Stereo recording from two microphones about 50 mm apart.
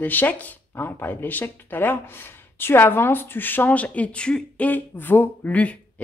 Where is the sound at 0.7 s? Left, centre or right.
Left.